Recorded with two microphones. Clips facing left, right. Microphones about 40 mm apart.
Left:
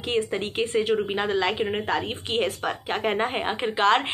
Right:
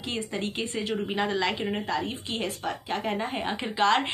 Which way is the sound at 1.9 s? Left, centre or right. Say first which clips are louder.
Left 3 dB; left.